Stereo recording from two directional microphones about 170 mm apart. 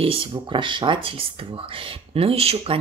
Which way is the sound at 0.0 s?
30° right (ahead or behind).